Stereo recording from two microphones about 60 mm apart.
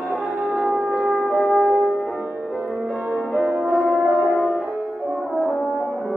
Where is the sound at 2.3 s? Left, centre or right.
Right.